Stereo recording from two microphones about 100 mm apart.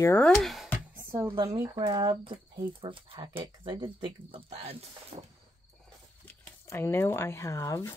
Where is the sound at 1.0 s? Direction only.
25° right (ahead or behind).